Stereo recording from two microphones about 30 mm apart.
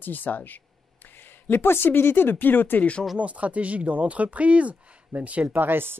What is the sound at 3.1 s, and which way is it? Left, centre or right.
Speech, right.